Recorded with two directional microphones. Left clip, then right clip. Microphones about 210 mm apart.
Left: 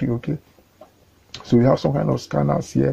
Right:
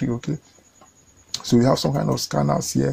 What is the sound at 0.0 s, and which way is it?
Speech, 40° right (ahead or behind).